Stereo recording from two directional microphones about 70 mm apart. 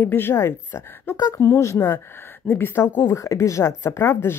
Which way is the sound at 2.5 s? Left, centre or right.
Left.